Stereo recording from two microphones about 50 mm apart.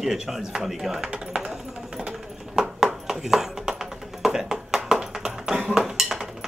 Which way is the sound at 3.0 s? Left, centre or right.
Centre.